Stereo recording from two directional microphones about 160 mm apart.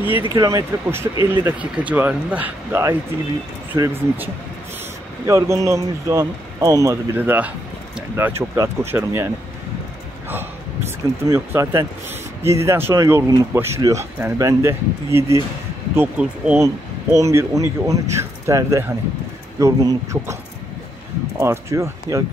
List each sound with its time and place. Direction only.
0.3 s speech: 25° right (ahead or behind)
11.2 s speech: 15° right (ahead or behind)
21.4 s speech: 15° right (ahead or behind)